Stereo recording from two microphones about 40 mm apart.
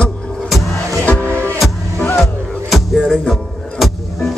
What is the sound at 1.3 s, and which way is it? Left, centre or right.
Music, right.